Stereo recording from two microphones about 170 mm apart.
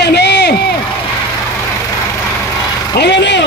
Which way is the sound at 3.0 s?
90° left.